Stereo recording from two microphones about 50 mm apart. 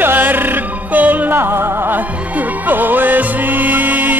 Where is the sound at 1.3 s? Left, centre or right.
Right.